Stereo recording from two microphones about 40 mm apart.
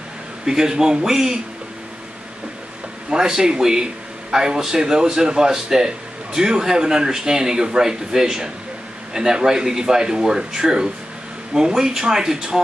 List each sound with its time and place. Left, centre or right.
0.5 s speech: centre
3.1 s speech: centre